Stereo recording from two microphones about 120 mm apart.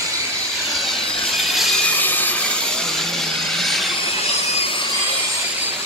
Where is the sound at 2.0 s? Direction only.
15° left (ahead or behind).